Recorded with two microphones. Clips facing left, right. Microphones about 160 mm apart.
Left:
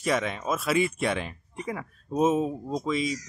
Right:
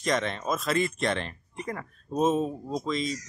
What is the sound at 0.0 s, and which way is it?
Speech, 5° left (ahead or behind).